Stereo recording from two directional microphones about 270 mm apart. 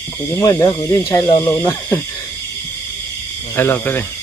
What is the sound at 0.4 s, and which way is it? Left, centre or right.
Speech, centre.